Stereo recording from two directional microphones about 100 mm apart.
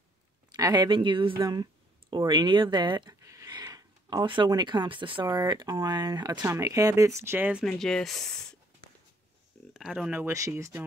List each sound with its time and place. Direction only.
0.5 s speech: 40° right (ahead or behind)
0.8 s a woman's voice: 60° right (ahead or behind)
1.4 s speech: 45° right (ahead or behind)
3.2 s a sound: 30° right (ahead or behind)
4.3 s speech: 45° right (ahead or behind)
5.5 s speech: 45° right (ahead or behind)
6.4 s speech: 30° right (ahead or behind)
7.2 s speech: 25° right (ahead or behind)
7.6 s speech: 5° left (ahead or behind)
9.8 s speech: 5° right (ahead or behind)
10.6 s speech: 25° right (ahead or behind)